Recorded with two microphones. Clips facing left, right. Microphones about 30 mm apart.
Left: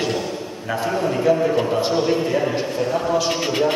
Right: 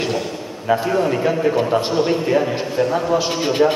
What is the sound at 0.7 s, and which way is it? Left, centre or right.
A man's voice, centre.